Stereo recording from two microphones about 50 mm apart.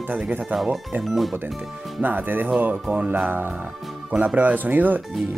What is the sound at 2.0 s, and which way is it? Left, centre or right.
Speech, right.